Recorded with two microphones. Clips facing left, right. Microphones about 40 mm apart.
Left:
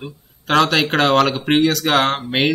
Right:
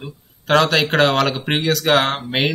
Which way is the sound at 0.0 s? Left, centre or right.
Centre.